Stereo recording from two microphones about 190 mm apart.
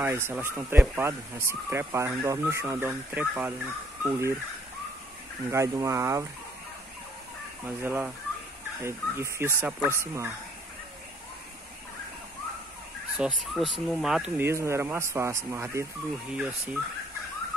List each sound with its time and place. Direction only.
0.0 s speech: 15° right (ahead or behind)
5.5 s speech: 15° right (ahead or behind)
7.6 s speech: 10° right (ahead or behind)
13.2 s speech: centre (ahead or behind)